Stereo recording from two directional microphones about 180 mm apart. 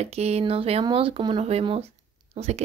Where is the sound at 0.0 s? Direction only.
35° right (ahead or behind).